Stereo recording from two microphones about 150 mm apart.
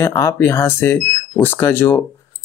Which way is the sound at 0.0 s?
20° left (ahead or behind).